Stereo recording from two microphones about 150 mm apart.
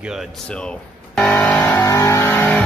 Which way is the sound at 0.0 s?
5° right (ahead or behind).